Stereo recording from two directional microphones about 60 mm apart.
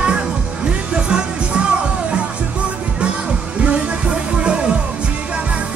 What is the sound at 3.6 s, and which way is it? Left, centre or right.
Music, right.